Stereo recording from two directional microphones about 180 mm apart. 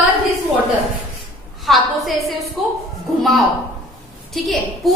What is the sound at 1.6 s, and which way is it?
A woman's voice, centre (ahead or behind).